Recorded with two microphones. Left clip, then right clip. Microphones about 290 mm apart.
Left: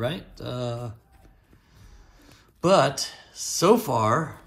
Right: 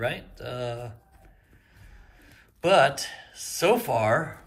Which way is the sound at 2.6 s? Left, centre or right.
Centre.